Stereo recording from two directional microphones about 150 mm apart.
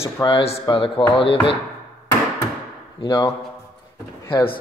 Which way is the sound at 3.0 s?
25° left (ahead or behind).